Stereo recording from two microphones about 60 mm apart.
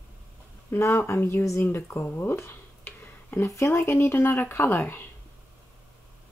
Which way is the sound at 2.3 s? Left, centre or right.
Left.